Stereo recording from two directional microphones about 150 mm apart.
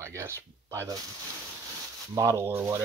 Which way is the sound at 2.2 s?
20° right (ahead or behind).